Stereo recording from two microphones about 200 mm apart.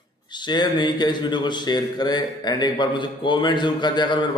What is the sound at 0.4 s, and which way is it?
A man's voice, 20° left (ahead or behind).